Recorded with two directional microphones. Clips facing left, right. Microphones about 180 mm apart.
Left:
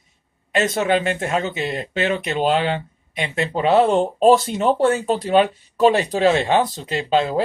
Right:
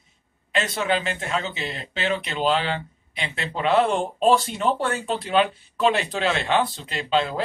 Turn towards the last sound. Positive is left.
turn(degrees=40)  # may be behind; listen again after turning